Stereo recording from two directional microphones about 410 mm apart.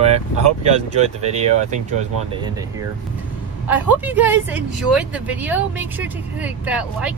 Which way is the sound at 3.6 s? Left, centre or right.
Centre.